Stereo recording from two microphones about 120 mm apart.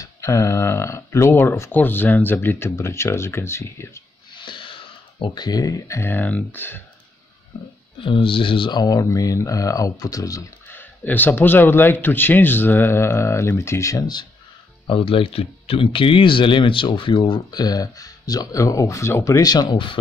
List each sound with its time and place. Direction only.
0.0 s speech: 25° left (ahead or behind)
4.4 s speech: 45° left (ahead or behind); by 6.8 s 15° left (ahead or behind)
8.0 s speech: 45° left (ahead or behind); by 10.5 s 30° left (ahead or behind)
10.7 s speech: 15° left (ahead or behind); by 14.2 s 30° left (ahead or behind)
14.9 s speech: 50° left (ahead or behind)